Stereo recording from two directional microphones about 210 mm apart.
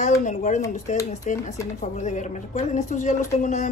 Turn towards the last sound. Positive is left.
turn(degrees=35)  # may be behind; listen again after turning